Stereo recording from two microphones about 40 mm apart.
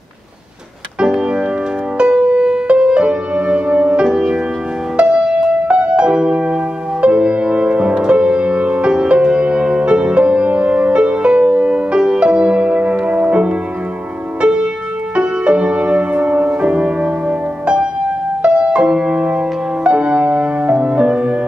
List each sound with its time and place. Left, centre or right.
0.9 s music: right
13.1 s music: right
14.4 s music: right